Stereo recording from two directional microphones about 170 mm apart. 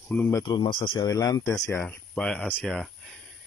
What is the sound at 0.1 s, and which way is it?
Speech, 15° left (ahead or behind).